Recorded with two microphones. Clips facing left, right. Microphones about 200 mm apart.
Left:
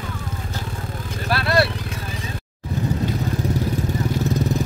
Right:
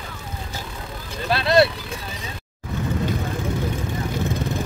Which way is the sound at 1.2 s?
20° right (ahead or behind).